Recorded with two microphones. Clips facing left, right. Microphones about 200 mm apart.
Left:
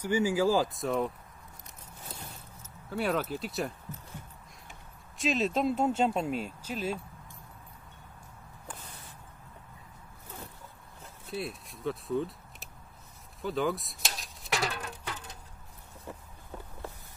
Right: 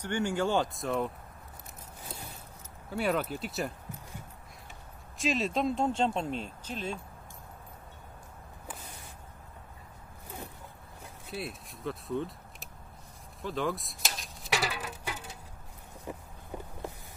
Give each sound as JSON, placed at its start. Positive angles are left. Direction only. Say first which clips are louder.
{"t": 0.0, "sound": "speech", "louder": "left 4 dB", "side_deg": 5}
{"t": 2.9, "sound": "speech", "louder": "even", "side_deg": 0}
{"t": 5.1, "sound": "speech", "louder": "left 1 dB", "side_deg": 0}
{"t": 11.2, "sound": "speech", "louder": "left 2 dB", "side_deg": 0}
{"t": 13.4, "sound": "a sound", "louder": "left 2 dB", "side_deg": 0}
{"t": 16.1, "sound": "a sound", "louder": "right 3 dB", "side_deg": -15}